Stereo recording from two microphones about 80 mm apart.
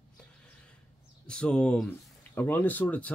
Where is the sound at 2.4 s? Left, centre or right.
Left.